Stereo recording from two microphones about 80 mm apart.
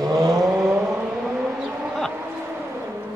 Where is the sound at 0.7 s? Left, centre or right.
Centre.